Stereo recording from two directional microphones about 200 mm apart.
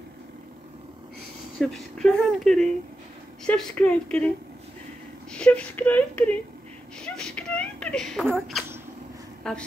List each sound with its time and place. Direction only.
1.6 s speech: centre (ahead or behind)
5.3 s speech: 5° left (ahead or behind)
7.0 s a sound: 5° left (ahead or behind)
8.3 s speech: 5° right (ahead or behind)